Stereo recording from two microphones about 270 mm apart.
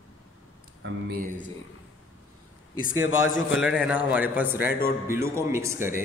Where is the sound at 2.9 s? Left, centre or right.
Left.